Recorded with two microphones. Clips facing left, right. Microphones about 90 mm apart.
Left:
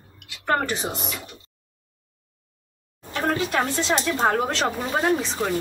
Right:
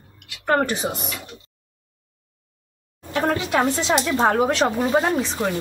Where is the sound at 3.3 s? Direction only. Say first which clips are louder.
Right 2 dB; 20° right (ahead or behind).